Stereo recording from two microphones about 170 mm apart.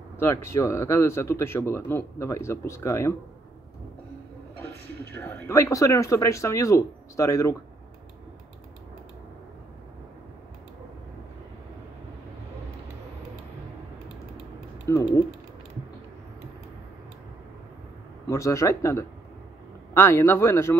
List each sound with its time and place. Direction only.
0.2 s speech: 15° left (ahead or behind)
5.1 s speech: 15° left (ahead or behind)
14.9 s ratchet: 20° left (ahead or behind)
18.3 s speech: 15° left (ahead or behind)